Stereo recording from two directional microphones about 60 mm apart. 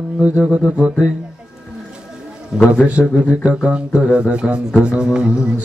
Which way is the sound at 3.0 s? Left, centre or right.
Left.